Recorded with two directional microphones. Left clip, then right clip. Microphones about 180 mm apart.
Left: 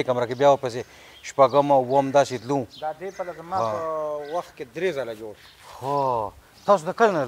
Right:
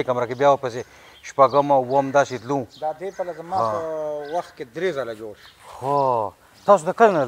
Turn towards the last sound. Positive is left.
turn(degrees=-20)  # may be behind; listen again after turning